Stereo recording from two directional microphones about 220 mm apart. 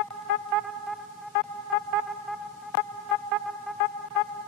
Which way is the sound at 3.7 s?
Centre (ahead or behind).